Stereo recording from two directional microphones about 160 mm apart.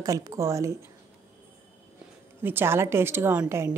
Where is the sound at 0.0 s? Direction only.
20° right (ahead or behind).